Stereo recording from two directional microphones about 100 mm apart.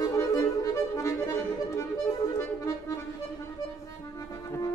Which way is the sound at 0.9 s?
30° left (ahead or behind).